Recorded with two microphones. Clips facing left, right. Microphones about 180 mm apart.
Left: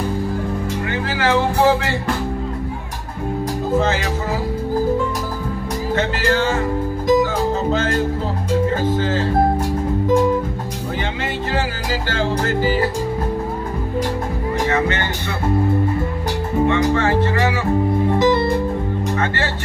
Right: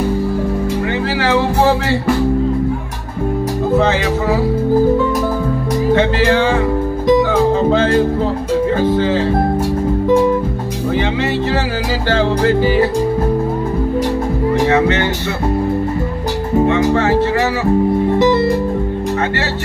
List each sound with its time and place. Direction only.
1.2 s music: 50° left (ahead or behind)
6.2 s music: 45° left (ahead or behind)
12.1 s music: 45° left (ahead or behind)
16.6 s music: 50° right (ahead or behind)